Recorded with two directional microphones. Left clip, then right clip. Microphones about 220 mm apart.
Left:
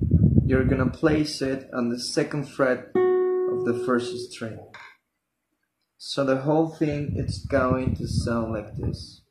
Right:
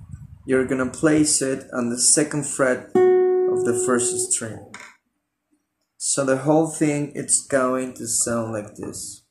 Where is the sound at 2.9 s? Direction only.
30° right (ahead or behind).